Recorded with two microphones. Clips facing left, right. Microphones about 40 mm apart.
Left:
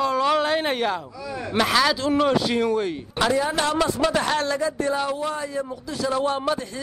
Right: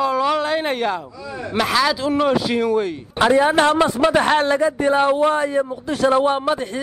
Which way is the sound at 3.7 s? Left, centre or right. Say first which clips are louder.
Right 5 dB; right.